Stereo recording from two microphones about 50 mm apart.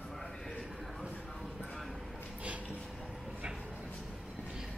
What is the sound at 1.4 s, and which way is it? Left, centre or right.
Vehicle, centre.